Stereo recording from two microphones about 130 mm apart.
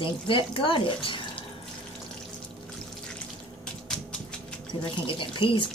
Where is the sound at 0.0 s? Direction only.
40° left (ahead or behind).